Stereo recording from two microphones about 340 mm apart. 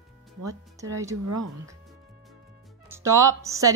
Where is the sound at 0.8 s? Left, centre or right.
Centre.